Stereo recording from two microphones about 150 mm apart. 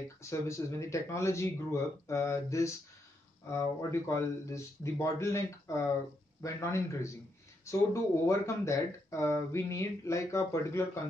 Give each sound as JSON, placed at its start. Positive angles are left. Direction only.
{"t": 0.2, "sound": "speech", "side_deg": 20}